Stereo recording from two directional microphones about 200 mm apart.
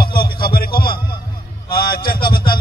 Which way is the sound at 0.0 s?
50° left (ahead or behind).